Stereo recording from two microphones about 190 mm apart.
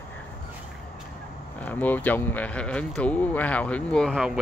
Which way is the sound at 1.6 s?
10° left (ahead or behind).